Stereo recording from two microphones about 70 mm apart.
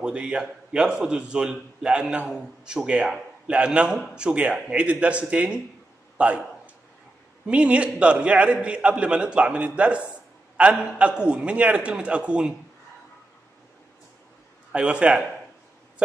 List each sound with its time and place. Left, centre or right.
0.0 s a man's voice: centre
6.1 s a sound: centre
7.4 s a man's voice: centre
14.7 s a man's voice: centre